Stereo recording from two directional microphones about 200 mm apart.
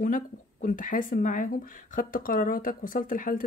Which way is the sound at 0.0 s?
45° left (ahead or behind).